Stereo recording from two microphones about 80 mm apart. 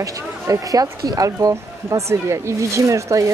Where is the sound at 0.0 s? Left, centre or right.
Right.